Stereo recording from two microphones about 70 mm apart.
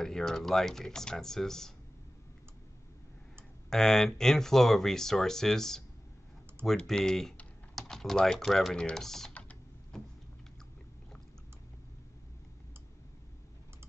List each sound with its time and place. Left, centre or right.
0.0 s speech: centre
3.7 s speech: centre
6.9 s speech: centre
7.7 s typing: centre
8.5 s speech: centre
8.7 s speech: centre
9.3 s typing: centre